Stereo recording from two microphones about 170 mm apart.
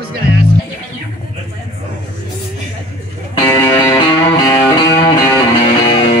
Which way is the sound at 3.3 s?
15° left (ahead or behind).